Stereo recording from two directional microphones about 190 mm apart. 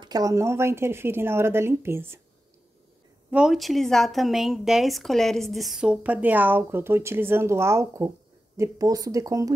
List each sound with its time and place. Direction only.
0.0 s speech: 20° right (ahead or behind)
3.3 s a woman's voice: 5° right (ahead or behind)